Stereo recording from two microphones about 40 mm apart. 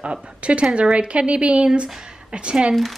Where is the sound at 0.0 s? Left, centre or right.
Right.